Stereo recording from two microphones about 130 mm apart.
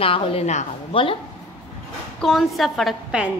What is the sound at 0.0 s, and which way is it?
Speech, 45° left (ahead or behind).